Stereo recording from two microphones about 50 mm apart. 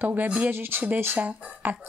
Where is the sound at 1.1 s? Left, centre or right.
Right.